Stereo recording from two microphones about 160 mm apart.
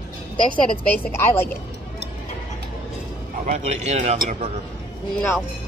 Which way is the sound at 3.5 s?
45° right (ahead or behind).